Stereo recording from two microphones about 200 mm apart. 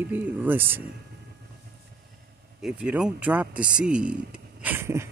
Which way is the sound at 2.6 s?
5° right (ahead or behind).